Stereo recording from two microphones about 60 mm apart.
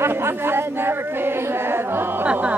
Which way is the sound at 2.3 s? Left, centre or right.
Right.